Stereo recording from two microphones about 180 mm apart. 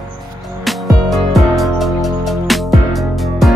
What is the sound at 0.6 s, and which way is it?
Music, centre (ahead or behind).